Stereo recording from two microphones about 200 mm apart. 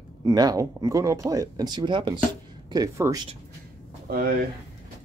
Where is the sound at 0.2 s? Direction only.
20° right (ahead or behind).